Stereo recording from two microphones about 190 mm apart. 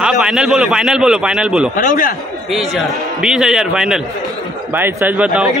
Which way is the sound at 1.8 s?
45° left (ahead or behind).